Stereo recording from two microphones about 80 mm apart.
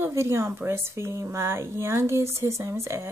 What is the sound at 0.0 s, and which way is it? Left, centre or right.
A woman's voice, right.